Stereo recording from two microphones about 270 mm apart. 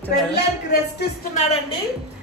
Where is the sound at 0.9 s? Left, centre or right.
Left.